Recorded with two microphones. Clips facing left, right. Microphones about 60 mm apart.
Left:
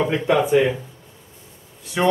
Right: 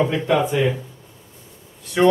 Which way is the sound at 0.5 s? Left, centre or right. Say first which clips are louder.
Left 3 dB; left.